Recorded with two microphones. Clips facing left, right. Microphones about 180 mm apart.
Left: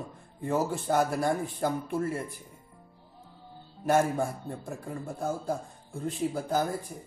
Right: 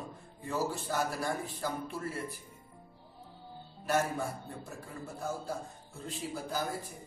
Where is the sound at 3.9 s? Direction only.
50° left (ahead or behind).